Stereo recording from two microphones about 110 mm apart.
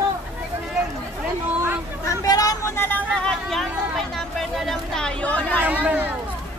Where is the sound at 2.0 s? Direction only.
30° left (ahead or behind).